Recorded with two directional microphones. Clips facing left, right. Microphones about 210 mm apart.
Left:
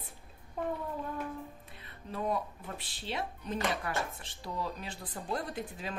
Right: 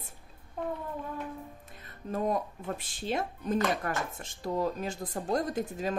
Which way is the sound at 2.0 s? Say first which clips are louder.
Right 4 dB; 45° right (ahead or behind).